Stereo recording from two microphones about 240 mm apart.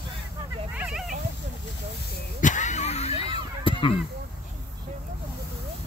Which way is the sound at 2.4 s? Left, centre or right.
Left.